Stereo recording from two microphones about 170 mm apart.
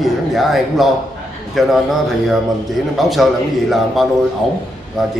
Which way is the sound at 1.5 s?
Centre (ahead or behind).